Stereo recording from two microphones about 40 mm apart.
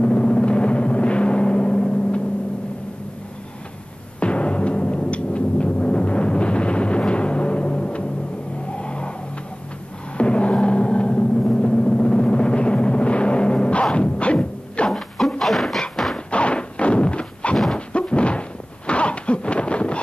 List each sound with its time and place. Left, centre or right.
0.0 s timpani: left
4.2 s timpani: left
8.7 s vehicle: left
10.1 s a sound: left
14.9 s dog: centre
16.3 s thunk: left
18.9 s a sound: left